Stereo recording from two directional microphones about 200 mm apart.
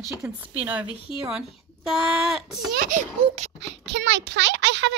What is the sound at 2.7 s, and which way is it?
Speech, 45° right (ahead or behind).